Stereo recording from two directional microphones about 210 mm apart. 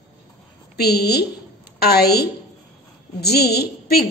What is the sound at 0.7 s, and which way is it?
A woman's voice, 50° left (ahead or behind).